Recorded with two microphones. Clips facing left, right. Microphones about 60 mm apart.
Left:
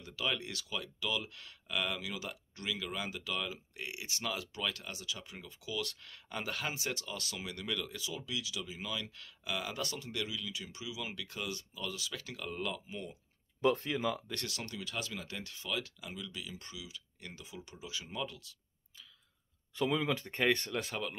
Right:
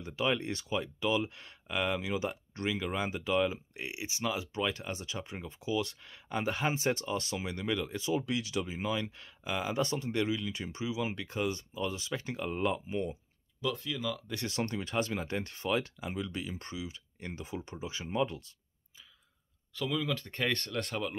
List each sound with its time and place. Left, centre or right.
0.0 s speech: right
8.1 s speech: right
13.6 s speech: left
14.5 s speech: right
19.7 s speech: left
20.2 s speech: centre